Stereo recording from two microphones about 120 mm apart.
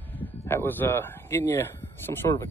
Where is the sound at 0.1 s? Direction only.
15° left (ahead or behind).